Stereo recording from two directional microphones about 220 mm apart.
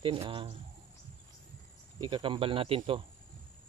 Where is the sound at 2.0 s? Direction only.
20° right (ahead or behind).